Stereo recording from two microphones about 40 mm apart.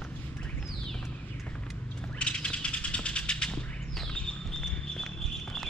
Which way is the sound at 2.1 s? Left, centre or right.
Left.